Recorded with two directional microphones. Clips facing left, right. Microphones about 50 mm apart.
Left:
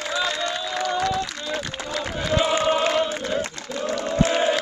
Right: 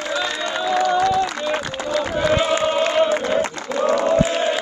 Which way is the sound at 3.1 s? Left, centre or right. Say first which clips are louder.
Right 7 dB; right.